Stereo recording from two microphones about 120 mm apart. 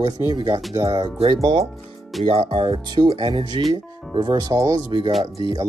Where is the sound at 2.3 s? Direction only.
55° right (ahead or behind).